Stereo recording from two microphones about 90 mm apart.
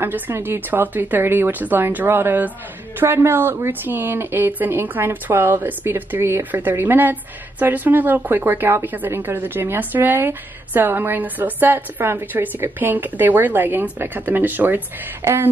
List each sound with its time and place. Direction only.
0.0 s speech: 25° right (ahead or behind)